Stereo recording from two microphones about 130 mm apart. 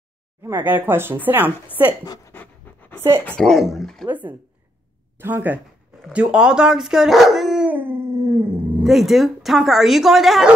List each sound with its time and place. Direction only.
0.7 s speech: 15° right (ahead or behind)
2.3 s pant: 15° left (ahead or behind)
3.3 s speech: 5° left (ahead or behind)
4.1 s speech: 15° right (ahead or behind)
7.7 s dog: 15° right (ahead or behind)
8.8 s speech: centre (ahead or behind)